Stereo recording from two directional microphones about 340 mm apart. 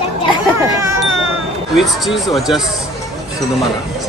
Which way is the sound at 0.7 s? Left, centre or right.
Centre.